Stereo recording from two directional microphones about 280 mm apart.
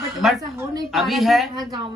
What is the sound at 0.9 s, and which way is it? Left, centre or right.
Speech, centre.